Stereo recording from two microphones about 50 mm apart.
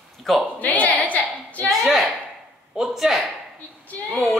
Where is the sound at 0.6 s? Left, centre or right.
Left.